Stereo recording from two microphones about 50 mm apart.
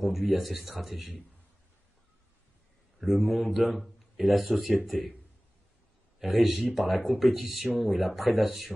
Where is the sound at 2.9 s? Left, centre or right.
Centre.